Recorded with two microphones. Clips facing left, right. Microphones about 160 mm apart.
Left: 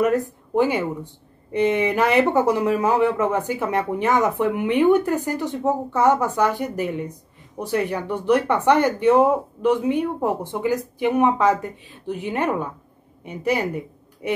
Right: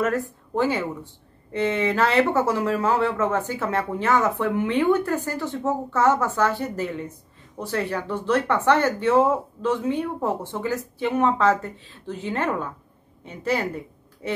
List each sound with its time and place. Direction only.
0.0 s speech: 15° left (ahead or behind)